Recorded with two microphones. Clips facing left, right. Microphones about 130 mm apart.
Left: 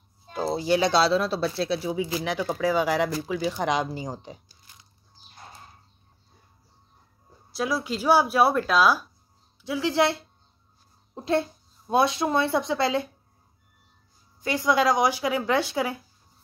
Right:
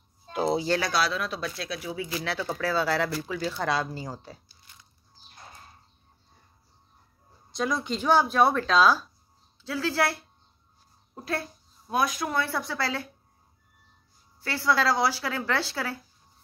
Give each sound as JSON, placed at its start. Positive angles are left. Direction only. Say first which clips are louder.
{"t": 0.3, "sound": "speech", "louder": "right 2 dB", "side_deg": -15}
{"t": 0.7, "sound": "speech", "louder": "left 6 dB", "side_deg": 20}
{"t": 2.1, "sound": "speech", "louder": "left 3 dB", "side_deg": 15}
{"t": 7.5, "sound": "speech", "louder": "left 1 dB", "side_deg": 5}
{"t": 14.4, "sound": "speech", "louder": "left 3 dB", "side_deg": 15}